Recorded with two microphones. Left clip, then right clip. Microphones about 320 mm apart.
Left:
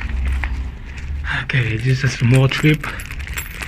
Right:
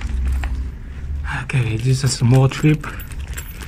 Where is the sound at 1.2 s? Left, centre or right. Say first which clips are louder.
Left 4 dB; centre.